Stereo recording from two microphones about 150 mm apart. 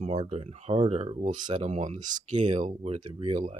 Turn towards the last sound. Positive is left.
turn(degrees=-40)  # may be behind; listen again after turning